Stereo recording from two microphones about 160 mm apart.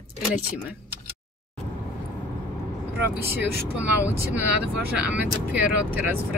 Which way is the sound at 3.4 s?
90° left.